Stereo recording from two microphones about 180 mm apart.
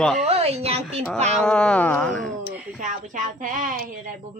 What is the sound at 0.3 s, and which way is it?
Speech, 35° right (ahead or behind).